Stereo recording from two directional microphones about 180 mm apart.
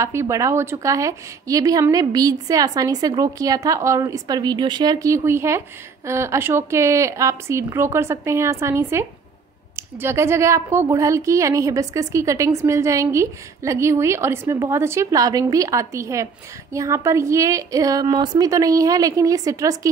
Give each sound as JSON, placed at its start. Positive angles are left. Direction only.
{"t": 0.0, "sound": "a woman's voice", "side_deg": -15}